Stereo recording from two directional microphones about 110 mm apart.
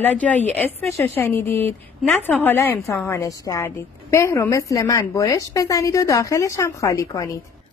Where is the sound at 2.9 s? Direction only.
30° left (ahead or behind).